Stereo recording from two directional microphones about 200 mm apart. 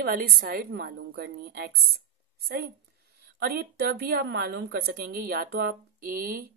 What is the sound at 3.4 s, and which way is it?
A woman's voice, 50° right (ahead or behind).